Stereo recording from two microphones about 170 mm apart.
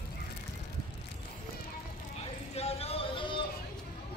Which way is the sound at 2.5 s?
35° left (ahead or behind).